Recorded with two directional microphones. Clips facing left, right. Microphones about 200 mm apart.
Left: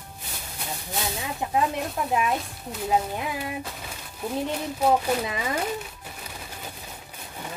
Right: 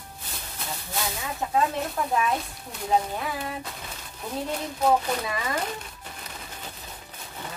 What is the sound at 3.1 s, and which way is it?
Speech, 15° left (ahead or behind).